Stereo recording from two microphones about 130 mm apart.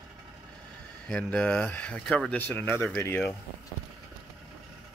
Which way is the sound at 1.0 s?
10° left (ahead or behind).